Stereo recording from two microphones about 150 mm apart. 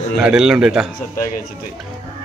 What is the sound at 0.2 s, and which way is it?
Speech, 5° right (ahead or behind).